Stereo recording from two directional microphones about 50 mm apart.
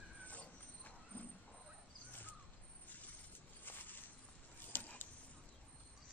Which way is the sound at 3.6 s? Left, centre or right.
Left.